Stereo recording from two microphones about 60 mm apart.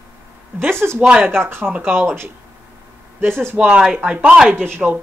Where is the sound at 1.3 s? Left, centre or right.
Right.